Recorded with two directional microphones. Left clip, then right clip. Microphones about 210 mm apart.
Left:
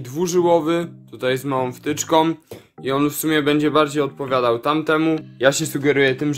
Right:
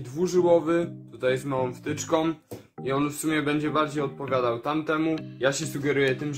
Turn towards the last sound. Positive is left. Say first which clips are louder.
# left 7 dB
turn(degrees=50)  # may be behind; listen again after turning